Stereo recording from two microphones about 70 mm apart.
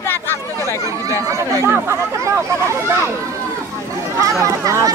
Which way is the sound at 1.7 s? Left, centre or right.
Right.